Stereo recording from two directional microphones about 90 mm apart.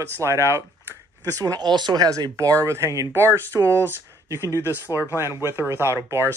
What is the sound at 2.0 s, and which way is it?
Speech, 40° right (ahead or behind).